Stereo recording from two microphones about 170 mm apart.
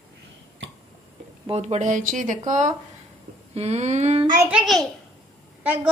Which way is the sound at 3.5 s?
40° right (ahead or behind).